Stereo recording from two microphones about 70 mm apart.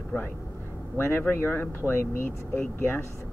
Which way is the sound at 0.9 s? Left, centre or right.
Left.